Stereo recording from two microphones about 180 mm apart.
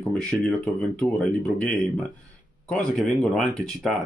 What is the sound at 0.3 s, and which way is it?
Speech, 5° left (ahead or behind).